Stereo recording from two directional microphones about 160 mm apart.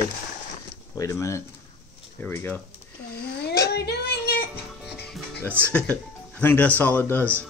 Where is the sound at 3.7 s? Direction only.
90° left.